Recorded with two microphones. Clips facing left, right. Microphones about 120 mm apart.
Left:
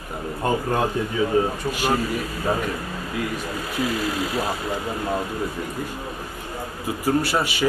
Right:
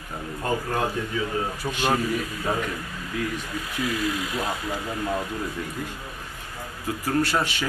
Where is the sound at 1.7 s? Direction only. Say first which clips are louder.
Left 2 dB; 5° left (ahead or behind).